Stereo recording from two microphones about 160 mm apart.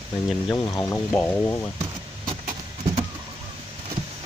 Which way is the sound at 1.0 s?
10° left (ahead or behind).